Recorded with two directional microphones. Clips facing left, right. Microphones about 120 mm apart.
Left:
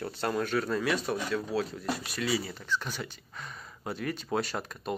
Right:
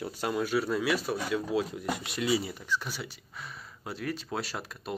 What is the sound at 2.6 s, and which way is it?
Speech, 10° right (ahead or behind).